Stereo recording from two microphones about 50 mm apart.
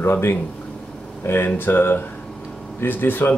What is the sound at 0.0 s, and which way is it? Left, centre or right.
Speech, left.